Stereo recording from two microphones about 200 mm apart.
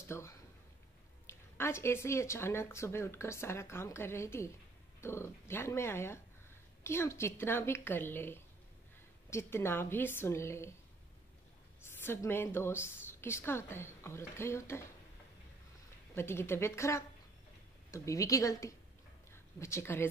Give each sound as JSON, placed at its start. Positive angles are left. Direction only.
{"t": 0.0, "sound": "a sound", "side_deg": 15}
{"t": 1.2, "sound": "speech", "side_deg": 15}
{"t": 11.9, "sound": "speech", "side_deg": 10}
{"t": 16.2, "sound": "speech", "side_deg": 10}